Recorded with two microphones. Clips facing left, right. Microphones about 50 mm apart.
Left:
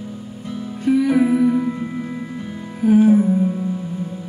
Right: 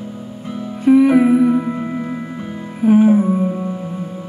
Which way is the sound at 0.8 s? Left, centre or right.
Right.